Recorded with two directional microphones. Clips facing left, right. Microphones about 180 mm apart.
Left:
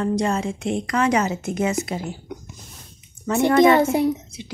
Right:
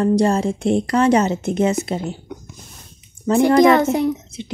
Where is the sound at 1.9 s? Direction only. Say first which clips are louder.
Right 4 dB; 25° right (ahead or behind).